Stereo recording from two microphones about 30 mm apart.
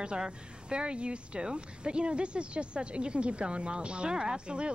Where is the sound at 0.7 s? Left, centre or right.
Right.